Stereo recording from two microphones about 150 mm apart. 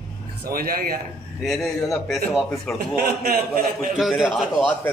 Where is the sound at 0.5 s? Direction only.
80° right.